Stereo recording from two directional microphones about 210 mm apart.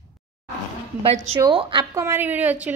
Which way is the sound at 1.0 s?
30° right (ahead or behind).